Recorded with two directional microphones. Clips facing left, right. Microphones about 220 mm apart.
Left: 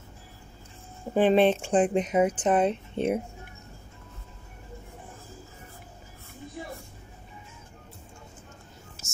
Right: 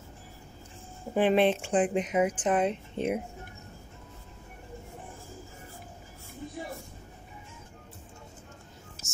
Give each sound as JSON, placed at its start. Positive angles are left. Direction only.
{"t": 1.1, "sound": "speech", "side_deg": 35}